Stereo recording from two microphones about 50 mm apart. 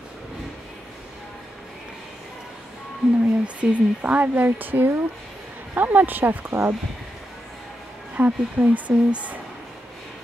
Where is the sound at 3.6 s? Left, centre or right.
Right.